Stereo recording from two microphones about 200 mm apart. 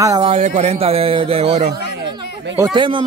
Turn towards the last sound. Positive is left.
turn(degrees=-25)  # may be behind; listen again after turning